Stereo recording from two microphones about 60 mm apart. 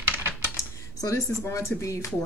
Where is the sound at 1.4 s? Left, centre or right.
Left.